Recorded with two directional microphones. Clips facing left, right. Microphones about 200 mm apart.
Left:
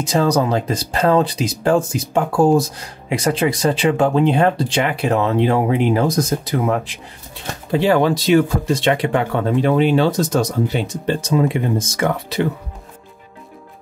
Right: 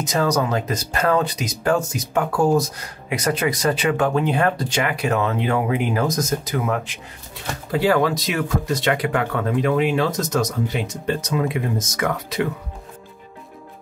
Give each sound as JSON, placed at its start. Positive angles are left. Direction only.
{"t": 0.0, "sound": "speech", "side_deg": 30}